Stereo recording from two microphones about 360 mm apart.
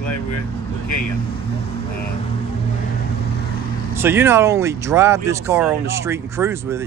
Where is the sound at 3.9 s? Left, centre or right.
Centre.